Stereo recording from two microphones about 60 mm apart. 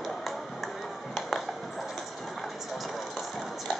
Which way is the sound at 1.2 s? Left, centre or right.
Centre.